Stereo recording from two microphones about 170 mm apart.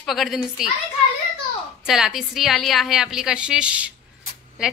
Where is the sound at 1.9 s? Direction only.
5° right (ahead or behind).